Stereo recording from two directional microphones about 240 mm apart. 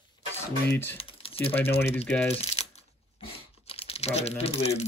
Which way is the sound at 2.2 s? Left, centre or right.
Left.